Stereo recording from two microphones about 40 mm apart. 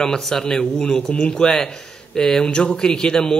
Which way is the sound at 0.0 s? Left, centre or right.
Centre.